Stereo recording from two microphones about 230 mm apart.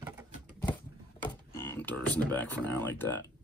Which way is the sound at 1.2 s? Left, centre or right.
Centre.